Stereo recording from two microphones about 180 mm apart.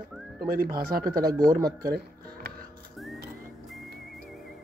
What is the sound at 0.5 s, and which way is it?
Speech, 55° right (ahead or behind).